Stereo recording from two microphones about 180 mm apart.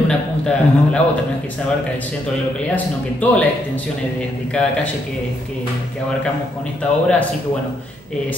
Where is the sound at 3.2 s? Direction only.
10° left (ahead or behind).